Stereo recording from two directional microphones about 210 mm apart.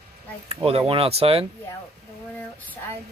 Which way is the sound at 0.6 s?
25° right (ahead or behind).